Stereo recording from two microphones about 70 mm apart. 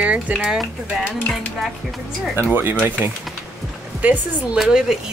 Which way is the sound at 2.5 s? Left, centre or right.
Right.